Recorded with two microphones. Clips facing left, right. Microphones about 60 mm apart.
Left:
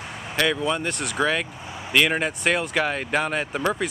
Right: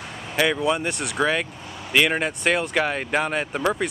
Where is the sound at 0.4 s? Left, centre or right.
Centre.